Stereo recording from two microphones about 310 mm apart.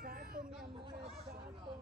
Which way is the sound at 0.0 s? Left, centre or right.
Right.